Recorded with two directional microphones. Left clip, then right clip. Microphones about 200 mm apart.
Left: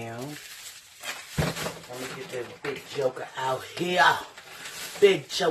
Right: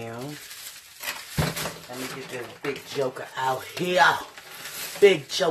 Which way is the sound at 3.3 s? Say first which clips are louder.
Right 2 dB; 20° right (ahead or behind).